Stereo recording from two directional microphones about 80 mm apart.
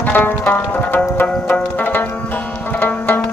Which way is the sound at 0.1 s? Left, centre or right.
Left.